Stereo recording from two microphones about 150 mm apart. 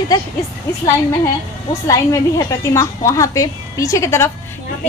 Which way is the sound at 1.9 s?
25° left (ahead or behind).